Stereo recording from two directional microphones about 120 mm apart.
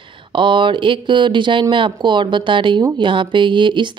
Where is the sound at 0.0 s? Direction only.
45° right (ahead or behind).